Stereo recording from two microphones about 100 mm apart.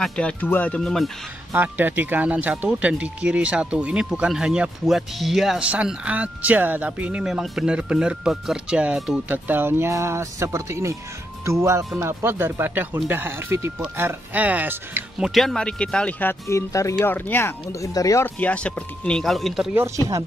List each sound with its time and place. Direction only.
0.0 s speech: 10° left (ahead or behind)
1.5 s speech: 20° right (ahead or behind)
9.3 s speech: 20° right (ahead or behind)
15.1 s speech: centre (ahead or behind); by 17.6 s 20° left (ahead or behind)
17.7 s speech: 35° left (ahead or behind)
18.2 s speech: 15° left (ahead or behind)